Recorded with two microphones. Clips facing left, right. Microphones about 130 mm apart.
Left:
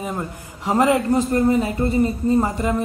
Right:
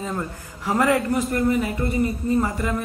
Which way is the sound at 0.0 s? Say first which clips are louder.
Left 1 dB; 15° left (ahead or behind).